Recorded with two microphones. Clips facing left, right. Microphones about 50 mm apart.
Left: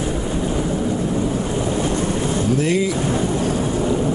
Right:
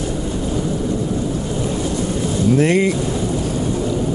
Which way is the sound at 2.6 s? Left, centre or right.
Right.